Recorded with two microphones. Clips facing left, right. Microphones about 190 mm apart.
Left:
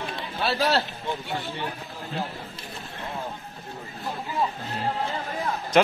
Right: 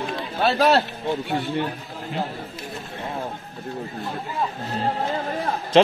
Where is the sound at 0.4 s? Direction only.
45° right (ahead or behind).